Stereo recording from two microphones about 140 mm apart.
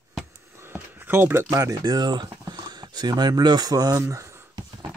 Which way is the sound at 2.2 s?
25° right (ahead or behind).